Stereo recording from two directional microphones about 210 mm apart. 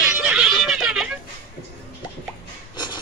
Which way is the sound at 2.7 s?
20° left (ahead or behind).